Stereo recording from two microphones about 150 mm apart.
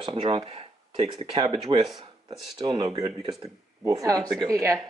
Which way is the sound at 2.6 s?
35° right (ahead or behind).